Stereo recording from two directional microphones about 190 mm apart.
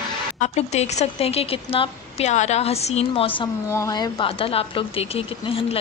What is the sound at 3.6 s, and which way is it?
Speech, 15° left (ahead or behind).